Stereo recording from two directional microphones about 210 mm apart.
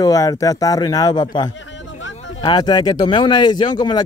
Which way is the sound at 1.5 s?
60° left (ahead or behind).